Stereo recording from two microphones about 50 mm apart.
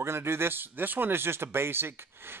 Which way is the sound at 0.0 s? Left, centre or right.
Right.